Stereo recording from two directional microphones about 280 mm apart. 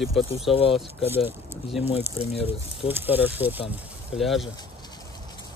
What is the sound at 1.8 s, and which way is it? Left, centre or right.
Speech, left.